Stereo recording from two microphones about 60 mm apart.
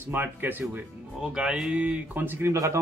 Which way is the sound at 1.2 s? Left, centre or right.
Centre.